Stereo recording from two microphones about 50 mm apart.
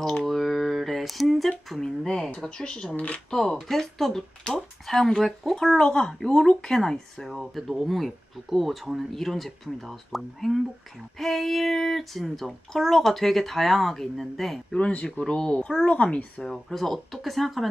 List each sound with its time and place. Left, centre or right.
0.2 s a sound: centre
3.3 s speech: centre
5.8 s speech: centre
7.2 s speech: centre
14.7 s speech: left
16.4 s speech: centre